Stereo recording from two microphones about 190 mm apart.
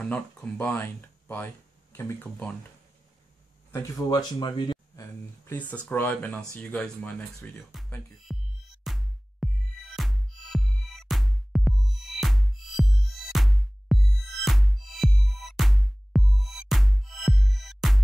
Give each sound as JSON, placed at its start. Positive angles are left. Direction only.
{"t": 0.0, "sound": "speech", "side_deg": 10}
{"t": 3.7, "sound": "speech", "side_deg": 15}
{"t": 5.4, "sound": "speech", "side_deg": 10}
{"t": 8.3, "sound": "music", "side_deg": 0}